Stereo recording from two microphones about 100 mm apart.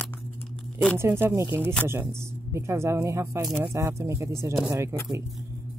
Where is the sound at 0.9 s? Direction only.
25° right (ahead or behind).